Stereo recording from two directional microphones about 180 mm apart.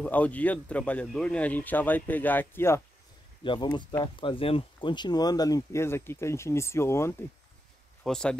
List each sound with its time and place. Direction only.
0.0 s speech: 10° left (ahead or behind)
3.4 s speech: 25° left (ahead or behind)
8.0 s speech: 5° left (ahead or behind)